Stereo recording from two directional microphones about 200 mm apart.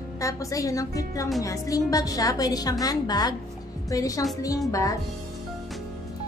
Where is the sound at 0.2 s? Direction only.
15° left (ahead or behind).